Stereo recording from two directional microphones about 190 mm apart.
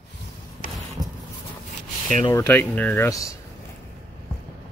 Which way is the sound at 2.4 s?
10° left (ahead or behind).